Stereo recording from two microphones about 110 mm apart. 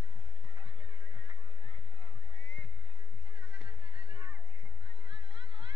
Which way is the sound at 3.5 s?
50° right (ahead or behind).